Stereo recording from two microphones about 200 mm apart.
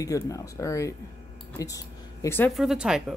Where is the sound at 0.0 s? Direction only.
15° left (ahead or behind).